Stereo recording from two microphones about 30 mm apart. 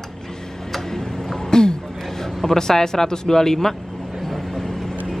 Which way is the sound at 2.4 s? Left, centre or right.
Centre.